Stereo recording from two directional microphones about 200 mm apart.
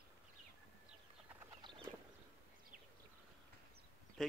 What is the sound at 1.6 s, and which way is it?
Clip-clop, 25° right (ahead or behind).